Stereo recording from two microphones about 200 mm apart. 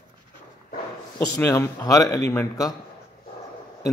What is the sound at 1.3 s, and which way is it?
A man's voice, 15° left (ahead or behind).